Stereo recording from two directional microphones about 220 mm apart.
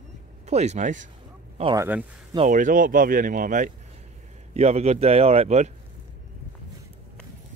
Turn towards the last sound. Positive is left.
turn(degrees=-30)  # may be behind; listen again after turning